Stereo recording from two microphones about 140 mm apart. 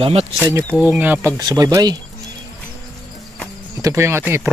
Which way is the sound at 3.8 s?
20° right (ahead or behind).